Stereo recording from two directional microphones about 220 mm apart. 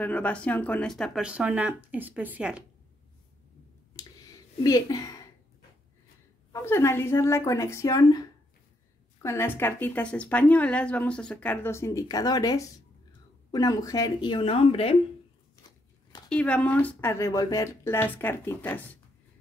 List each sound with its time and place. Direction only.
0.0 s speech: 5° left (ahead or behind)
3.9 s a sound: 15° left (ahead or behind)
6.5 s a woman's voice: 10° left (ahead or behind)
9.2 s a woman's voice: 10° left (ahead or behind)
15.6 s a sound: 15° left (ahead or behind)
16.3 s a woman's voice: 5° left (ahead or behind)